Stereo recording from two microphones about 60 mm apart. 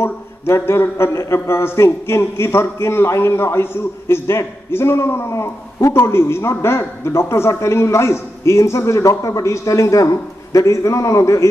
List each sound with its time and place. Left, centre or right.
0.0 s a man's voice: left